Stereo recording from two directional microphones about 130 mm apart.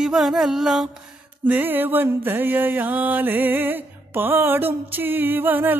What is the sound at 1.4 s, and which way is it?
Music, 15° right (ahead or behind).